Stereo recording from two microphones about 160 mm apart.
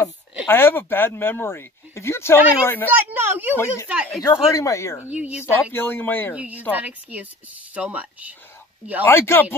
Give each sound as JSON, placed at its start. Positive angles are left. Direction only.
{"t": 0.5, "sound": "speech", "side_deg": 15}
{"t": 3.1, "sound": "a woman's voice", "side_deg": -10}
{"t": 3.5, "sound": "speech", "side_deg": 15}
{"t": 5.1, "sound": "a woman's voice", "side_deg": -10}
{"t": 5.4, "sound": "speech", "side_deg": 15}
{"t": 6.3, "sound": "a woman's voice", "side_deg": -10}
{"t": 9.0, "sound": "speech", "side_deg": 15}